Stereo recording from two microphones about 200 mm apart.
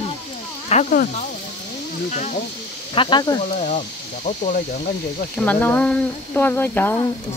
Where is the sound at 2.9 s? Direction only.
25° left (ahead or behind).